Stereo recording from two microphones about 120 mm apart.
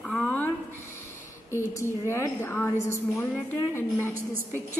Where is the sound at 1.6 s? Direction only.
20° left (ahead or behind).